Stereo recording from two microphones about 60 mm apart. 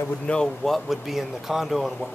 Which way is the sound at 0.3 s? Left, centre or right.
Left.